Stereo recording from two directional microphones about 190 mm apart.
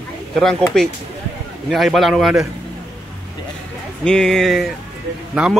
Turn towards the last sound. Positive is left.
turn(degrees=-5)  # may be behind; listen again after turning